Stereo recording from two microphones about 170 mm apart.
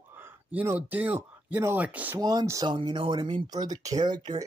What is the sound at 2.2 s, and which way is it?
Speech, 20° right (ahead or behind).